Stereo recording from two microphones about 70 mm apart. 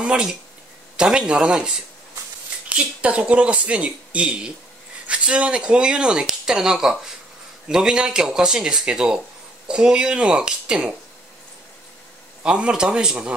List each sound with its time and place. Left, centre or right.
0.0 s speech: centre
12.4 s speech: centre